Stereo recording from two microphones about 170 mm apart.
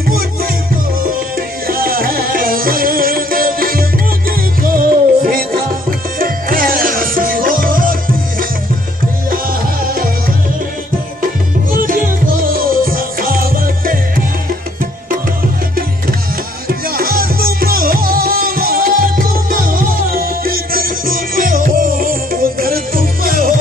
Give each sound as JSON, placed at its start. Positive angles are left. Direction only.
{"t": 0.0, "sound": "music", "side_deg": -65}
{"t": 1.7, "sound": "music", "side_deg": -60}
{"t": 11.7, "sound": "music", "side_deg": -55}
{"t": 16.6, "sound": "music", "side_deg": -60}